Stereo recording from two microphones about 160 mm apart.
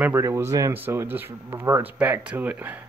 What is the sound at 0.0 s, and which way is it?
Speech, 15° right (ahead or behind).